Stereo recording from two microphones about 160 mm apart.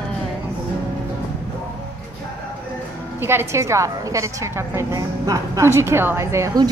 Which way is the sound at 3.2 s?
15° right (ahead or behind).